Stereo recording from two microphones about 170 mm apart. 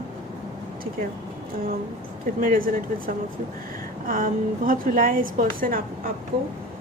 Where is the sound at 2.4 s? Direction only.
55° right (ahead or behind).